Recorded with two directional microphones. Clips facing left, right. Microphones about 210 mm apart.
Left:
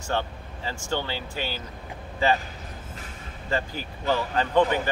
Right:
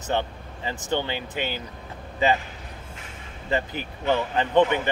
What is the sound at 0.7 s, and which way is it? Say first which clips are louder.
Speech: right 3 dB; 20° right (ahead or behind).